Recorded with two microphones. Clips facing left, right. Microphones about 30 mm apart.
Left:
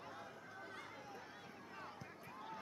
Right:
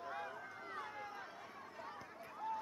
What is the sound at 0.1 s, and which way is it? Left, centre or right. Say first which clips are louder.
Run: right 7 dB; right.